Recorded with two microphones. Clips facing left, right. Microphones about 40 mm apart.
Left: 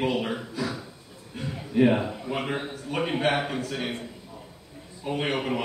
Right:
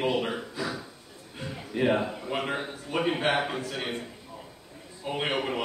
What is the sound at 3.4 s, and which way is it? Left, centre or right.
Speech, right.